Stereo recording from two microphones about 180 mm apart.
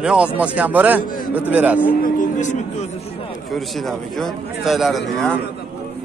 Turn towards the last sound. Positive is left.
turn(degrees=0)  # may be behind; listen again after turning